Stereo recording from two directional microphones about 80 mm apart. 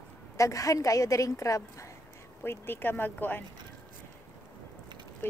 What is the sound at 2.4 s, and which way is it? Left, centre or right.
Speech, left.